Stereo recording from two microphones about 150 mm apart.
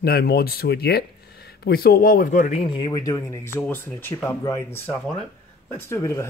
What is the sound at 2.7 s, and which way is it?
Speech, 35° left (ahead or behind).